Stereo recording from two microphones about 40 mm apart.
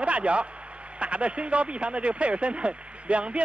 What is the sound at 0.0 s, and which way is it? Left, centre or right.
A man's voice, right.